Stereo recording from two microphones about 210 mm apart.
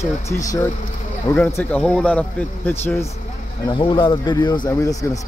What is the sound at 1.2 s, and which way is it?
Speech, 10° left (ahead or behind).